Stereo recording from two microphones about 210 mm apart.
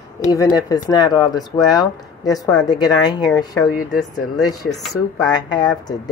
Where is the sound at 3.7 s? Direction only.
40° left (ahead or behind).